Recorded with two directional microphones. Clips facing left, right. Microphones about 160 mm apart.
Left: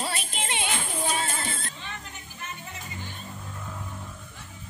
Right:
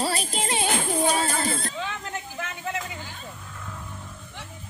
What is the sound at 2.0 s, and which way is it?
Music, 90° right.